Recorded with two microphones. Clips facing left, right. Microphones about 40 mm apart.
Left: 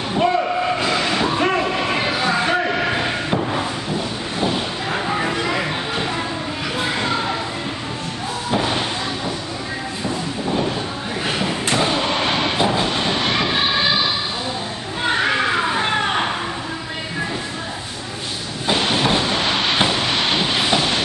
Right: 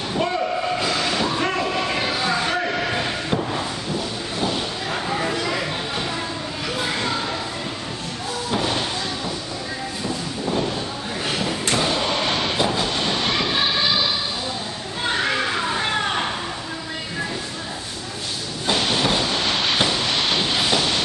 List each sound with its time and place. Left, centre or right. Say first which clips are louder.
0.1 s train: left 5 dB; centre
4.4 s a sound: left 3 dB; centre
8.5 s slam: left 3 dB; centre
11.2 s thump: left 2 dB; centre
15.0 s children playing: left 4 dB; centre
18.7 s train: left 2 dB; centre